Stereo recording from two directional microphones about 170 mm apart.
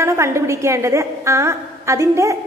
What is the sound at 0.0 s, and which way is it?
A woman's voice, 15° right (ahead or behind).